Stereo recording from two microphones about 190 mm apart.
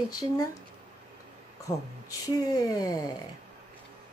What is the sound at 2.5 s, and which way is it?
Speech, 20° left (ahead or behind).